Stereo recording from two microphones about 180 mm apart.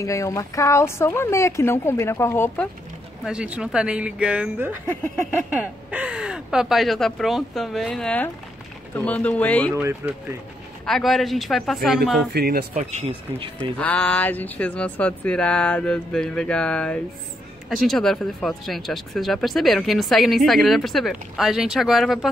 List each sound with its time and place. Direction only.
0.0 s speech: 15° left (ahead or behind)
3.3 s speech: 5° right (ahead or behind)
5.9 s speech: 5° right (ahead or behind); by 9.8 s 10° left (ahead or behind)
9.8 s speech: 10° right (ahead or behind)
12.3 s speech: 60° right (ahead or behind)
12.7 s speech: 40° right (ahead or behind)
13.6 s speech: 10° left (ahead or behind)